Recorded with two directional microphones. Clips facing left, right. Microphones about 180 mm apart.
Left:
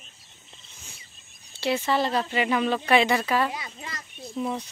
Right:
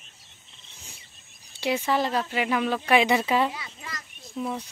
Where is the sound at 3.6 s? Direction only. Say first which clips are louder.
Left 2 dB; 35° left (ahead or behind).